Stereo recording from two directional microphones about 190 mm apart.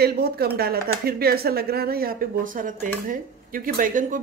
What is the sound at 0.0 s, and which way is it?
Speech, 55° right (ahead or behind).